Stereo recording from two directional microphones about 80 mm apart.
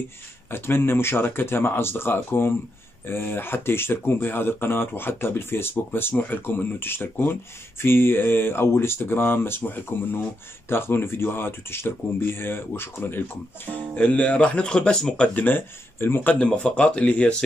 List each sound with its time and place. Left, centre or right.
0.5 s speech: left; by 15.4 s centre
15.4 s speech: left
16.3 s speech: centre